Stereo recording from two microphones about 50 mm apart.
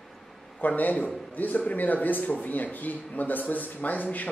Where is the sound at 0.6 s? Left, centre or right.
Left.